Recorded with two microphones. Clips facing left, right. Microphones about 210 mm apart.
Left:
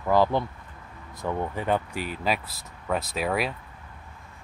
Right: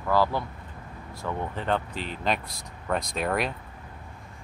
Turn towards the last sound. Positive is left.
turn(degrees=5)  # may be behind; listen again after turning